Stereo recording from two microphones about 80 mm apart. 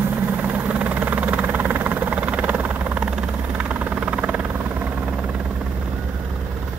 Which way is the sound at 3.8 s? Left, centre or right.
Centre.